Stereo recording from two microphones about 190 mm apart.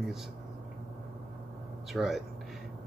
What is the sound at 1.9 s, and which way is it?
Speech, centre (ahead or behind).